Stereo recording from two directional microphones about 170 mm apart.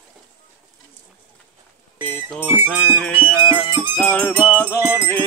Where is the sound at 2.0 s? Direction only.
10° left (ahead or behind).